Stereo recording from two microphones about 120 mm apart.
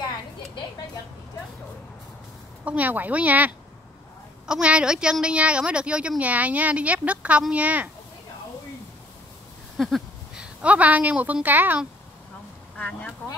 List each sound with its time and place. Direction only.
2.6 s a woman's voice: 10° right (ahead or behind)
9.8 s a woman's voice: centre (ahead or behind); by 11.9 s 15° right (ahead or behind)
12.7 s speech: 10° left (ahead or behind)